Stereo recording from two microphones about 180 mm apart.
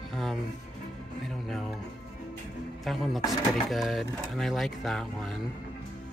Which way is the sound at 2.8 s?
Centre (ahead or behind).